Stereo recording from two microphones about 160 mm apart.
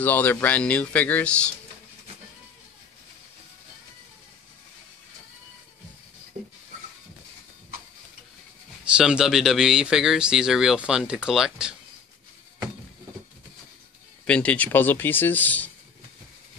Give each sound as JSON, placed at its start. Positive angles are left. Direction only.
{"t": 0.0, "sound": "speech", "side_deg": 10}
{"t": 6.4, "sound": "a sound", "side_deg": -45}
{"t": 8.9, "sound": "speech", "side_deg": -5}
{"t": 14.2, "sound": "speech", "side_deg": 10}